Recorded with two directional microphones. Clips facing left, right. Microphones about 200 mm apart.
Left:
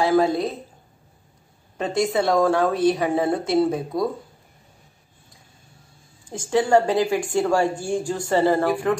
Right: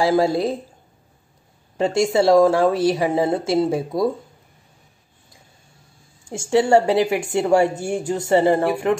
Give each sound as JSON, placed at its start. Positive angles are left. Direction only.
{"t": 0.1, "sound": "a woman's voice", "side_deg": -30}
{"t": 2.0, "sound": "a woman's voice", "side_deg": -25}
{"t": 6.2, "sound": "a woman's voice", "side_deg": -25}